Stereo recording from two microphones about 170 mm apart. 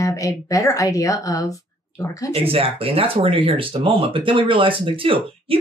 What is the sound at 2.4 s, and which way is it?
Speech, 35° right (ahead or behind).